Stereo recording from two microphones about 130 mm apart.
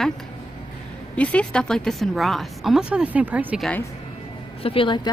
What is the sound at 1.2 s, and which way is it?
Speech, 10° left (ahead or behind).